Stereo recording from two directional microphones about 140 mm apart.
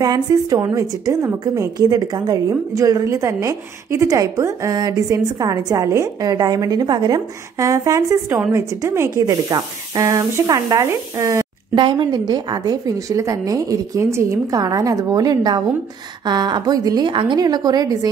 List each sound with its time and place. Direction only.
0.0 s a woman's voice: 25° right (ahead or behind)
11.7 s a woman's voice: 35° right (ahead or behind)